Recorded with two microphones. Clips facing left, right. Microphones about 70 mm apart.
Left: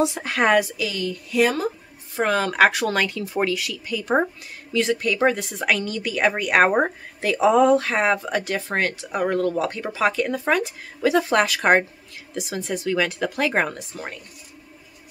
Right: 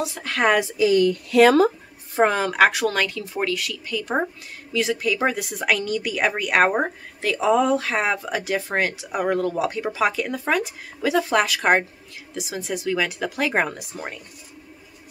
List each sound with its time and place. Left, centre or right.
0.0 s a woman's voice: centre
0.6 s speech: right
1.3 s speech: right
2.2 s speech: centre
2.5 s speech: centre